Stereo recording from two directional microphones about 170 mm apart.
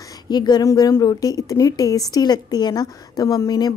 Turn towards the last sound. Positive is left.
turn(degrees=20)  # may be behind; listen again after turning